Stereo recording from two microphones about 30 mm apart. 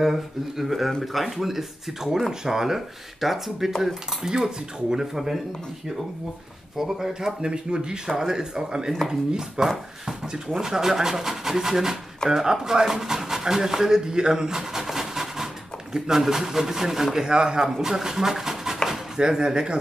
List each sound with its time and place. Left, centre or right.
0.0 s speech: centre
3.8 s speech: right
5.1 s speech: centre
6.8 s speech: centre
14.9 s a sound: centre
15.9 s speech: centre
17.6 s speech: centre
19.1 s speech: right